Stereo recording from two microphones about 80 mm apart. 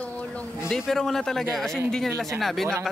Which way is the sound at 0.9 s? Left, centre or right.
Centre.